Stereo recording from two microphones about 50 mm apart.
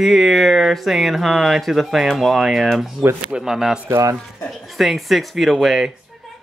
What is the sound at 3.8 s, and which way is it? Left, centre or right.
Speech, right.